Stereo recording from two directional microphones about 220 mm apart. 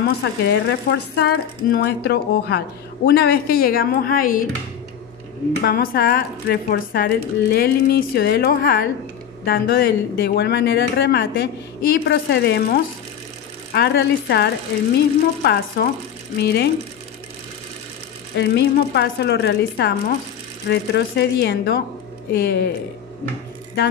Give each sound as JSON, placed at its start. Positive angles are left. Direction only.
{"t": 0.0, "sound": "speech", "side_deg": 50}
{"t": 5.7, "sound": "speech", "side_deg": 45}
{"t": 18.3, "sound": "speech", "side_deg": 50}